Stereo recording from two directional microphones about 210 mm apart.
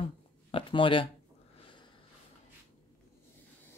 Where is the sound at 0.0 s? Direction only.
25° left (ahead or behind).